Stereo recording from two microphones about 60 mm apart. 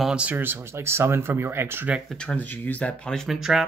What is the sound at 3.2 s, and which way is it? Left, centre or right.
Speech, centre.